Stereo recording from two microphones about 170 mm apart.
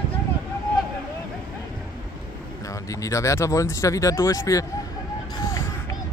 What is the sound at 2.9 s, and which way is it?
Speech, 20° left (ahead or behind).